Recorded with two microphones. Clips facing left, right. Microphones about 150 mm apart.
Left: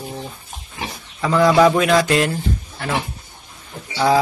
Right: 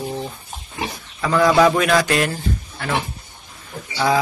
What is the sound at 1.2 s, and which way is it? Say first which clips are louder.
A man's voice: left 1 dB; 20° left (ahead or behind).